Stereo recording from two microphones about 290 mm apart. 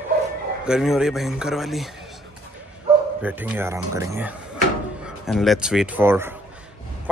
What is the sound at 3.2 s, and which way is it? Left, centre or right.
A man's voice, centre.